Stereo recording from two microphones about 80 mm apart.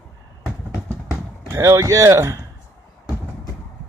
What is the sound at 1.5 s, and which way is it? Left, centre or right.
Speech, right.